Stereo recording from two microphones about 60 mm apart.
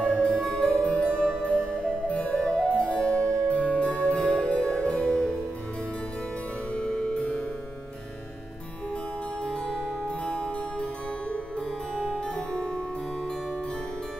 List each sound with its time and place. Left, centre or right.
0.0 s music: centre
6.7 s harpsichord: centre
10.0 s music: centre
12.0 s music: centre